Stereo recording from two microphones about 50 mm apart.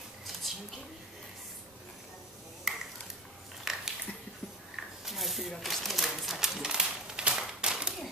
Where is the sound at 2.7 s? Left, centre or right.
Centre.